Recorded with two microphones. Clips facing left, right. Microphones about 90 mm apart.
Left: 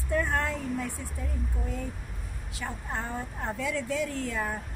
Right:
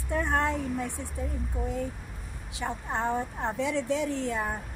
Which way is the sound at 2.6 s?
25° right (ahead or behind).